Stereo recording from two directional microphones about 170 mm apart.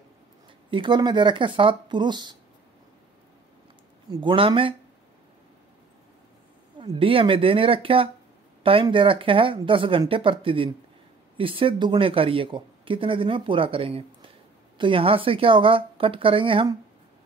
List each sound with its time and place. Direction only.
0.7 s speech: 30° right (ahead or behind)
4.1 s speech: 30° right (ahead or behind)
6.8 s speech: 30° right (ahead or behind)